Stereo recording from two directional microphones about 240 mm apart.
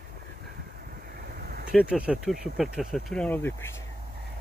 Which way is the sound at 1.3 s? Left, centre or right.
Right.